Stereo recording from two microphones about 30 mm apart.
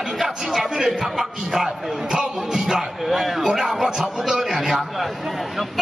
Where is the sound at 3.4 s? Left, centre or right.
Right.